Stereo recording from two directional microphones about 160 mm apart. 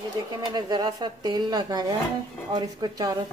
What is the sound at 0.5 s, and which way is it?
Speech, 25° right (ahead or behind).